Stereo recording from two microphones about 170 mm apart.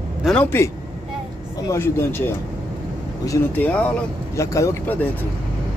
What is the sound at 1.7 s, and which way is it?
Speech, 15° left (ahead or behind).